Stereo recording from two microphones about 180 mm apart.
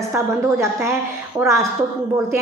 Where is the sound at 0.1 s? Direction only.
15° right (ahead or behind).